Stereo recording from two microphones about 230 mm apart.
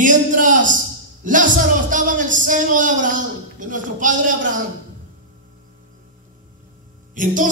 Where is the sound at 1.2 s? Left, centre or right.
Right.